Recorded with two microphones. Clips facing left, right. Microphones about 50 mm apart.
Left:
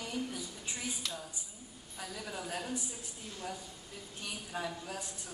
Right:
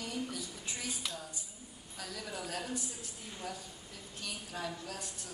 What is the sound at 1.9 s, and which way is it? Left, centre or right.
A woman's voice, centre.